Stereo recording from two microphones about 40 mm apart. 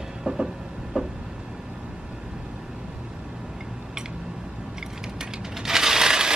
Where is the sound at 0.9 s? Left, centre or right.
Centre.